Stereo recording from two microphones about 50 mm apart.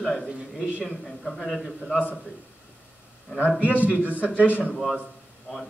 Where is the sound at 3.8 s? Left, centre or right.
Right.